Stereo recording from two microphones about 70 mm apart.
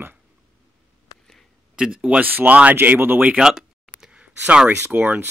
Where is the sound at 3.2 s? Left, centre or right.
Centre.